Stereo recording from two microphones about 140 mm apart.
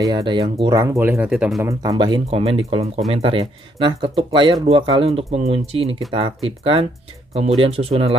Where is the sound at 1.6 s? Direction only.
20° right (ahead or behind).